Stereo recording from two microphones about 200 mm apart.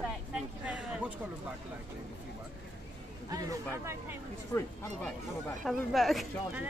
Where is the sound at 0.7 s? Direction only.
5° right (ahead or behind).